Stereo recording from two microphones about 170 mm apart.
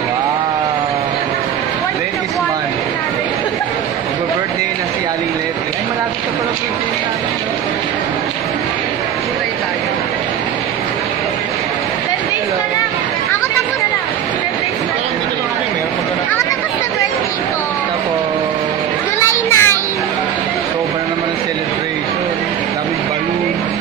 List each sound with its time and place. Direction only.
19.1 s children playing: 15° left (ahead or behind)